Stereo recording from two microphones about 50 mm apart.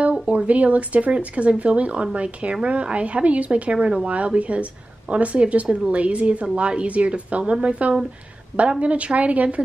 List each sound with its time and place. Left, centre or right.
0.3 s speech: right